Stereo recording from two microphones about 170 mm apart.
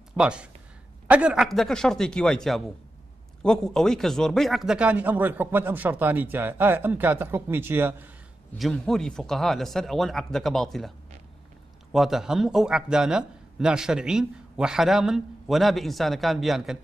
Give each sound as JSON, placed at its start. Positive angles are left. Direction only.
{"t": 0.2, "sound": "speech", "side_deg": -5}
{"t": 8.5, "sound": "speech", "side_deg": 0}
{"t": 11.9, "sound": "speech", "side_deg": 0}